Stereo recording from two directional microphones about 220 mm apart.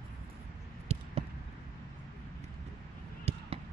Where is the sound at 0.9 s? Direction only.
30° right (ahead or behind).